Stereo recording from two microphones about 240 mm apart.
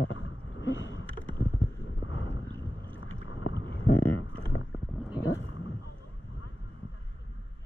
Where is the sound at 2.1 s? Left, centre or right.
Left.